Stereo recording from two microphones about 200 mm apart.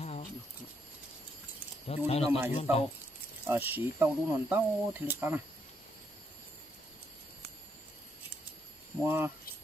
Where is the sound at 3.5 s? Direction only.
10° right (ahead or behind).